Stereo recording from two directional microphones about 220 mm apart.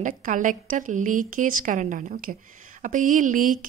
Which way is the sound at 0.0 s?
35° right (ahead or behind).